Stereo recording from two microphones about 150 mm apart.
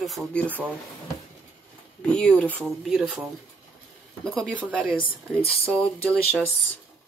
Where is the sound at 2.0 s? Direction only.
5° left (ahead or behind).